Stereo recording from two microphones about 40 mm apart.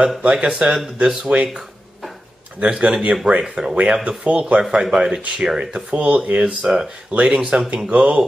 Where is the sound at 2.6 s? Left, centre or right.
Right.